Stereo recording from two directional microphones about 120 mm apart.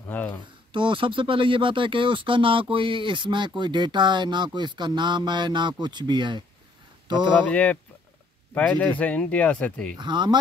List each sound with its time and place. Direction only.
0.1 s a sound: 15° left (ahead or behind)
0.7 s speech: 45° right (ahead or behind)
7.4 s speech: 10° left (ahead or behind)
9.9 s speech: 40° right (ahead or behind)